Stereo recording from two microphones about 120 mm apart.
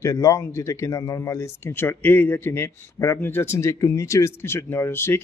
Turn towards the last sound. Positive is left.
turn(degrees=20)  # may be behind; listen again after turning